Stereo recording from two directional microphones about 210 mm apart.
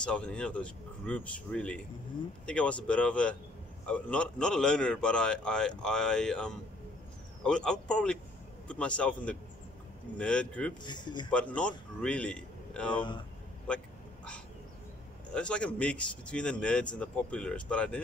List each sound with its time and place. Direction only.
0.0 s a man's voice: 5° left (ahead or behind)
10.8 s speech: 20° left (ahead or behind)
11.2 s a man's voice: 5° left (ahead or behind)
15.3 s a man's voice: 5° left (ahead or behind)